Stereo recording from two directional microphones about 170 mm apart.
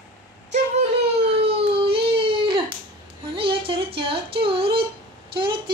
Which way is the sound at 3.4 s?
30° right (ahead or behind).